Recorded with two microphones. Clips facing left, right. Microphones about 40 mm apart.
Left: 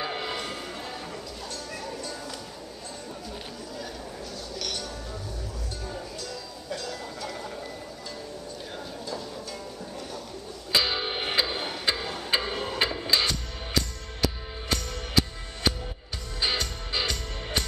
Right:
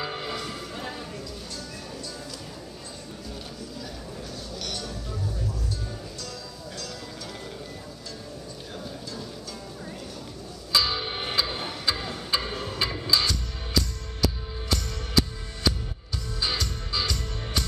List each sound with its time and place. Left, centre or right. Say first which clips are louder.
0.0 s music: left 1 dB; left
10.7 s music: even; left
12.7 s music: even; left